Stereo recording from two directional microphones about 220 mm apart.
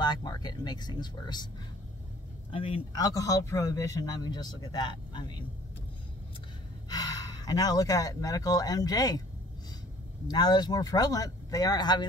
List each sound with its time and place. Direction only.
0.0 s speech: 20° left (ahead or behind)
2.5 s speech: 25° left (ahead or behind)
6.9 s speech: 15° left (ahead or behind)
10.3 s speech: 20° left (ahead or behind)